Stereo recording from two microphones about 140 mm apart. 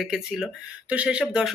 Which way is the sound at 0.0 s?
5° right (ahead or behind).